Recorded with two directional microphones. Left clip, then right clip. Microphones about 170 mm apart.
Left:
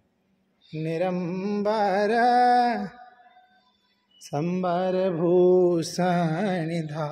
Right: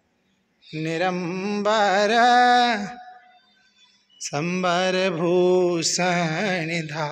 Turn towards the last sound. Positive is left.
turn(degrees=25)  # may be behind; listen again after turning